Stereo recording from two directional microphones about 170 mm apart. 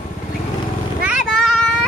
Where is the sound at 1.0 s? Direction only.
5° right (ahead or behind).